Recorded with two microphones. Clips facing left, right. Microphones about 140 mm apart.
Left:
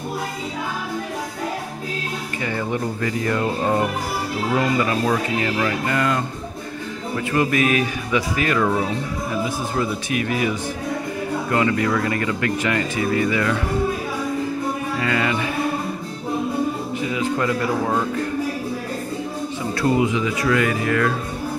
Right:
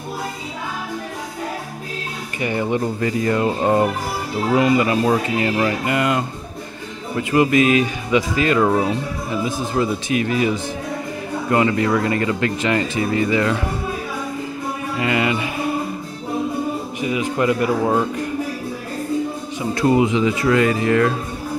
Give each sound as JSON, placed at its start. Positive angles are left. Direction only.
{"t": 2.4, "sound": "speech", "side_deg": -20}
{"t": 4.6, "sound": "speech", "side_deg": -20}
{"t": 7.3, "sound": "speech", "side_deg": -25}
{"t": 9.8, "sound": "speech", "side_deg": -25}
{"t": 11.5, "sound": "speech", "side_deg": -25}
{"t": 15.0, "sound": "speech", "side_deg": -20}
{"t": 17.0, "sound": "speech", "side_deg": -15}
{"t": 19.7, "sound": "speech", "side_deg": -20}